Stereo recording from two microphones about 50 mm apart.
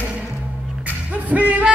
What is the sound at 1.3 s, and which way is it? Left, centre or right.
Music, right.